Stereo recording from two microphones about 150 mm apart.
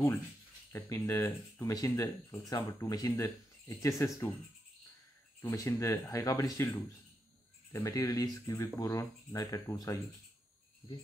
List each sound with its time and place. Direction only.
0.7 s speech: 20° left (ahead or behind)
5.4 s speech: 20° left (ahead or behind)